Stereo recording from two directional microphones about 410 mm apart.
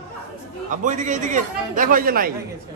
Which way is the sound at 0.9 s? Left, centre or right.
Centre.